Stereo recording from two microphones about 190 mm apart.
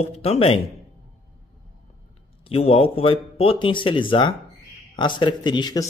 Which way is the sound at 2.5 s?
30° left (ahead or behind).